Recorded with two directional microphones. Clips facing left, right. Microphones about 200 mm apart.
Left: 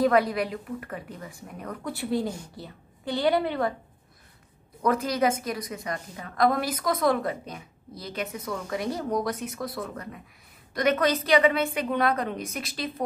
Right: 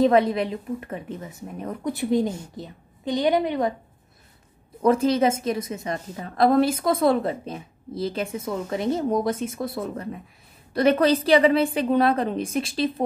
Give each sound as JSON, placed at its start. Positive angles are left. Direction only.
{"t": 0.0, "sound": "a woman's voice", "side_deg": -25}
{"t": 4.8, "sound": "a woman's voice", "side_deg": -25}